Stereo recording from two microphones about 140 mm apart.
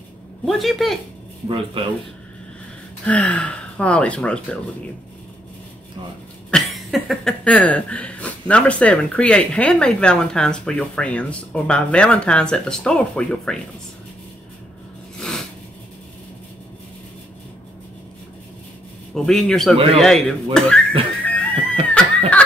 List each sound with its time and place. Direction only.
0.5 s a man's voice: centre (ahead or behind)
1.5 s speech: 40° right (ahead or behind)
3.1 s speech: 10° left (ahead or behind)
6.5 s speech: centre (ahead or behind)
15.1 s a sound: 5° left (ahead or behind)
19.1 s a man's voice: 5° left (ahead or behind)
21.3 s a sound: 10° left (ahead or behind)